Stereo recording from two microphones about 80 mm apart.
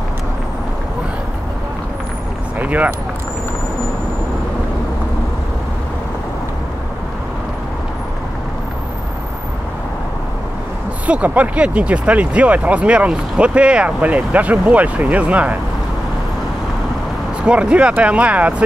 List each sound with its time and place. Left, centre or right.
2.6 s speech: centre
11.1 s speech: centre
17.5 s speech: centre